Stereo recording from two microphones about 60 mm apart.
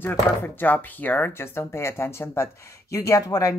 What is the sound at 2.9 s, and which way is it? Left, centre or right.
Speech, left.